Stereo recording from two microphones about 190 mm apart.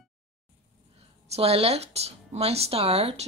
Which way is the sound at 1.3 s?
30° right (ahead or behind).